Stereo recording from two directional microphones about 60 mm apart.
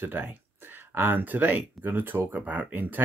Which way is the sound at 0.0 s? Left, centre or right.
Right.